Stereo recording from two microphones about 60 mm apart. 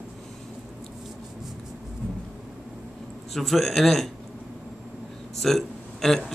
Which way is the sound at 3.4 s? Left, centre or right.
Centre.